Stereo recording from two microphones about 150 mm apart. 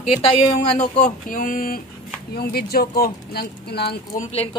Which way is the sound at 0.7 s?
55° left (ahead or behind).